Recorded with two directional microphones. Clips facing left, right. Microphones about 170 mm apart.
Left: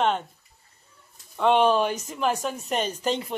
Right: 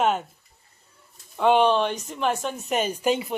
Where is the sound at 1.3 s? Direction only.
Centre (ahead or behind).